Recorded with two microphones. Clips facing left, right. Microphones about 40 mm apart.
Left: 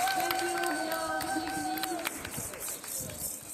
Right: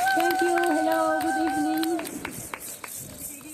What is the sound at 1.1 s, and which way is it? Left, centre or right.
Music, right.